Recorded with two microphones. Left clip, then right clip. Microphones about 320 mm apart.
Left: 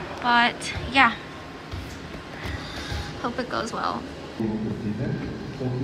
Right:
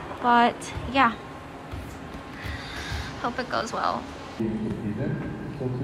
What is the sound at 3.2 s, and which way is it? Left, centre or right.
Speech, centre.